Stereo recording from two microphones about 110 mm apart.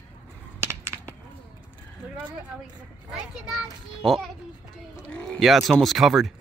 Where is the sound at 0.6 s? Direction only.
20° right (ahead or behind).